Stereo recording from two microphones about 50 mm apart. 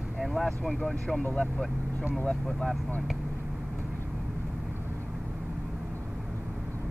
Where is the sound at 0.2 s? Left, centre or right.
Centre.